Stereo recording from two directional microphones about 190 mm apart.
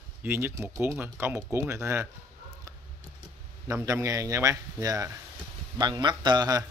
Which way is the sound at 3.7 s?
15° right (ahead or behind).